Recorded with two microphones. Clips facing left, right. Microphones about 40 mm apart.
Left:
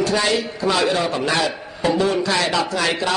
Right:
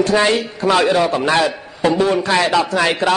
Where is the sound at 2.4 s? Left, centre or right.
Centre.